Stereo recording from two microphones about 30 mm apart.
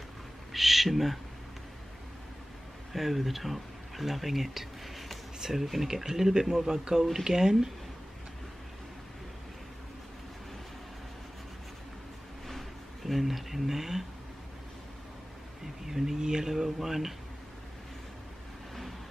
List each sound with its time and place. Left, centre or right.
0.5 s owl: centre
2.9 s speech: centre; by 7.5 s right
13.0 s speech: centre
15.6 s a sound: centre
16.2 s speech: right